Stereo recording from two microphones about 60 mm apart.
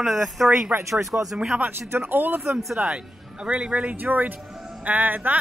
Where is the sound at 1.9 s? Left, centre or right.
Right.